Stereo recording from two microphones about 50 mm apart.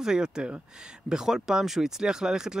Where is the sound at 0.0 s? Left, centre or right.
Centre.